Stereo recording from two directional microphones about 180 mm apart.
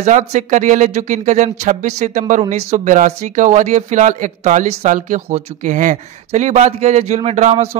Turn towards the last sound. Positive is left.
turn(degrees=-40)  # may be behind; listen again after turning